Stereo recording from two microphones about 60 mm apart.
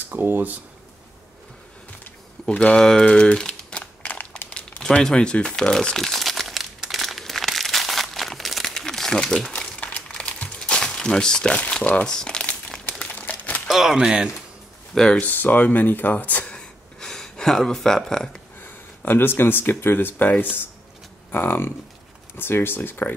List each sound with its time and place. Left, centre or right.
0.1 s speech: right
2.4 s speech: centre
3.8 s a sound: left
4.5 s crumpling: centre
9.8 s crumpling: left
10.6 s crumpling: centre; by 13.6 s left
13.7 s speech: centre
15.0 s speech: centre
15.2 s speech: left
16.5 s a sound: centre
18.6 s speech: left